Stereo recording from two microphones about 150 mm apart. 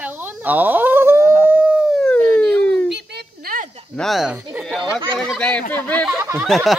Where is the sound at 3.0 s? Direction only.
85° right.